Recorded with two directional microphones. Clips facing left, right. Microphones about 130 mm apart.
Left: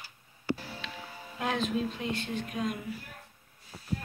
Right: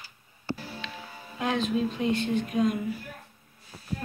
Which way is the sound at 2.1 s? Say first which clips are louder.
Right 8 dB; 20° right (ahead or behind).